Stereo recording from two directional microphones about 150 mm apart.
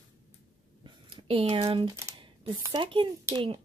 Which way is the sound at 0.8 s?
35° right (ahead or behind).